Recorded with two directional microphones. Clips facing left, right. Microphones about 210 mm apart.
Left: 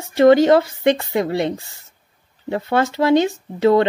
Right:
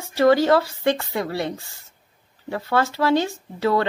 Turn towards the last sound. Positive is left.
turn(degrees=20)  # may be behind; listen again after turning